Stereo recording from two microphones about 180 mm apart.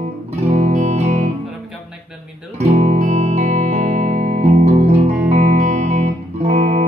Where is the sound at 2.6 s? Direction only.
40° right (ahead or behind).